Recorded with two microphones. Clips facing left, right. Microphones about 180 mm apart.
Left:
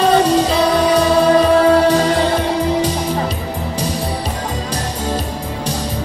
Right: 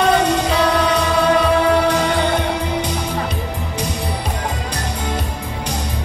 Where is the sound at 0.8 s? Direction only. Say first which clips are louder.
Left 4 dB; 35° left (ahead or behind).